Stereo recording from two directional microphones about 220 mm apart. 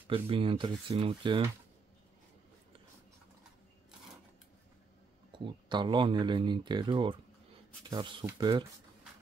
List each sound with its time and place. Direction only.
0.1 s speech: 25° right (ahead or behind)
5.3 s speech: 20° right (ahead or behind)